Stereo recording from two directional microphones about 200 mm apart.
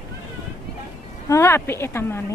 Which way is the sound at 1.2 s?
15° left (ahead or behind).